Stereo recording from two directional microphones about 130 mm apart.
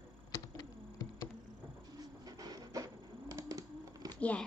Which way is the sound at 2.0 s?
30° right (ahead or behind).